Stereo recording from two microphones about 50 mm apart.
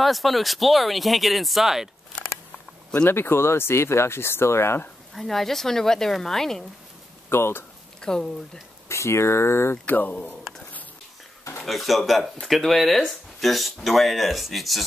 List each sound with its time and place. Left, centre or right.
0.0 s speech: centre
3.1 s speech: left
5.1 s a woman's voice: centre
7.2 s speech: left
8.0 s speech: centre
8.8 s speech: left
9.9 s speech: left
11.6 s speech: centre